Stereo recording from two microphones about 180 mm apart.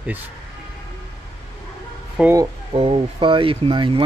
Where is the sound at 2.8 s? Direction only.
30° right (ahead or behind).